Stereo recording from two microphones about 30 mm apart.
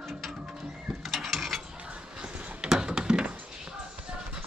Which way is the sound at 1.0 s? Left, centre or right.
Centre.